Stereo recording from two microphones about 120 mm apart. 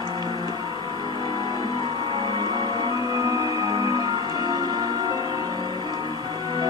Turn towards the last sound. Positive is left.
turn(degrees=-35)  # may be behind; listen again after turning